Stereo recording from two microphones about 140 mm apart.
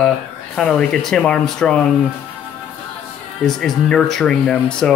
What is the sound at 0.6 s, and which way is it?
Speech, 5° left (ahead or behind).